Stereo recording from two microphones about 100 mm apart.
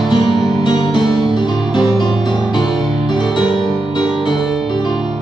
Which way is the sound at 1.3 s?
45° left (ahead or behind).